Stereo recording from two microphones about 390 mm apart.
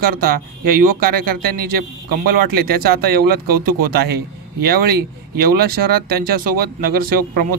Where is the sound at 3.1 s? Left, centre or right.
Right.